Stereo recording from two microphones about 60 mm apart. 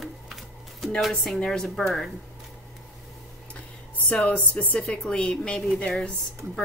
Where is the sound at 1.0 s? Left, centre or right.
Centre.